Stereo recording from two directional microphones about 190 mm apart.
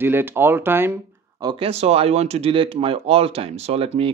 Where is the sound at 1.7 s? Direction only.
35° right (ahead or behind).